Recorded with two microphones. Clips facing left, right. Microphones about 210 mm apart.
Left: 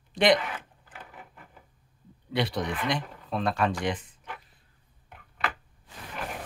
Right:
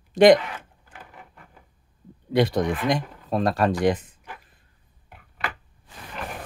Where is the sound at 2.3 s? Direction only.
45° right (ahead or behind).